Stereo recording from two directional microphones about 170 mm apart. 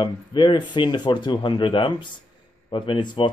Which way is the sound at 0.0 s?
30° left (ahead or behind).